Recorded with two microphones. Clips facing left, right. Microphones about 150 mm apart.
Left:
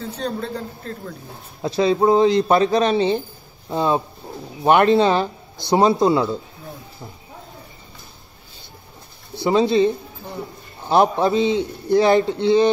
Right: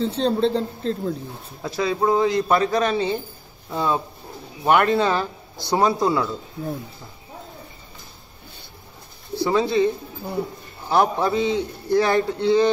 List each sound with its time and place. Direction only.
0.0 s speech: 25° right (ahead or behind)
1.6 s a man's voice: 25° left (ahead or behind)
9.4 s a man's voice: 20° left (ahead or behind)
10.9 s a man's voice: 20° left (ahead or behind)